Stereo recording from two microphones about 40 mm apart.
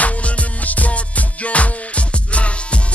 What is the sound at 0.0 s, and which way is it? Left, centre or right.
Music, left.